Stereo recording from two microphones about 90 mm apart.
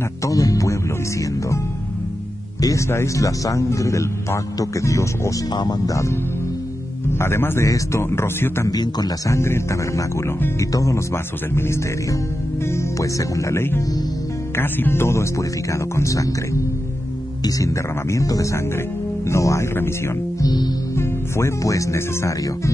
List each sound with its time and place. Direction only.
0.2 s music: 40° left (ahead or behind)
2.6 s a man's voice: 35° left (ahead or behind)
5.5 s a man's voice: 50° left (ahead or behind)
7.1 s a man's voice: 25° left (ahead or behind)
8.6 s a man's voice: 45° left (ahead or behind)
9.3 s a man's voice: 30° left (ahead or behind)
17.6 s a man's voice: 35° left (ahead or behind)
20.3 s a man's voice: 45° left (ahead or behind)
20.9 s speech: 30° left (ahead or behind)